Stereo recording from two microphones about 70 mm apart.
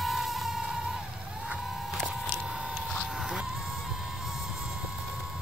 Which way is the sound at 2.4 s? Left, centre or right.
Centre.